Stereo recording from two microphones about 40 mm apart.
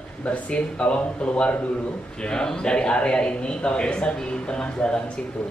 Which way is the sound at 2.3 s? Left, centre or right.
Centre.